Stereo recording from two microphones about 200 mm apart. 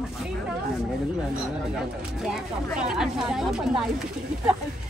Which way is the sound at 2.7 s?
5° right (ahead or behind).